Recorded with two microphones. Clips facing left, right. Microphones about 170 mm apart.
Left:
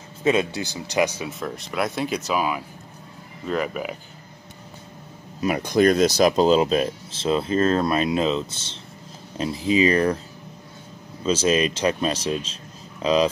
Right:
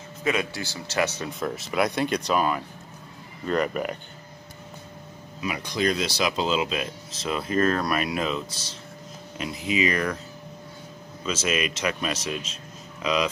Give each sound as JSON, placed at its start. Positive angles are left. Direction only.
{"t": 0.2, "sound": "speech", "side_deg": 25}
{"t": 1.4, "sound": "speech", "side_deg": 0}
{"t": 5.4, "sound": "speech", "side_deg": 45}
{"t": 11.2, "sound": "speech", "side_deg": 30}